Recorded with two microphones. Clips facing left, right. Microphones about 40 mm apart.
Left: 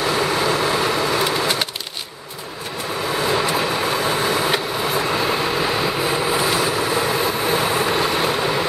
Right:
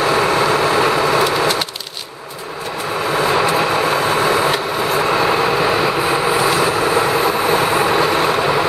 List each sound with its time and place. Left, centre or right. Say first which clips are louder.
0.0 s vehicle: right 5 dB; right
3.3 s vehicle: right 4 dB; right